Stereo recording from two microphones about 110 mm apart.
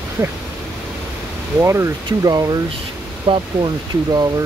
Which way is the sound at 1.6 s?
25° right (ahead or behind).